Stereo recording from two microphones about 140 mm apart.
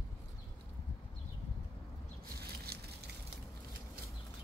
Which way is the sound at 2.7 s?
90° right.